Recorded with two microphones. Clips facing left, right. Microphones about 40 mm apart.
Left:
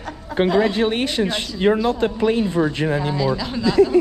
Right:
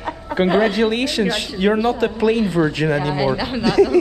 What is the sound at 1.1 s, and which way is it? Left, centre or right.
Speech, right.